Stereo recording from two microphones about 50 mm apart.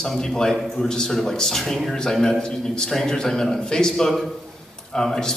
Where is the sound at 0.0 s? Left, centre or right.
Centre.